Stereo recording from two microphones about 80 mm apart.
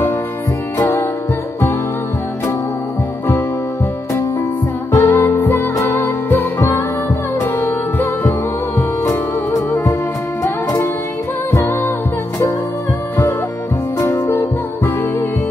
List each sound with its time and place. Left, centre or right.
0.7 s music: left
4.9 s music: left
13.9 s music: left